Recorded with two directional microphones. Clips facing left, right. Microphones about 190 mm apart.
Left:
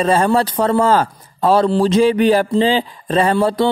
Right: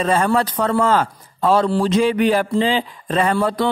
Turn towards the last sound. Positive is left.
turn(degrees=30)  # may be behind; listen again after turning